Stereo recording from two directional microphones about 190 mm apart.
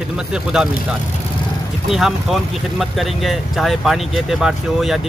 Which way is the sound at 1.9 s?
Centre (ahead or behind).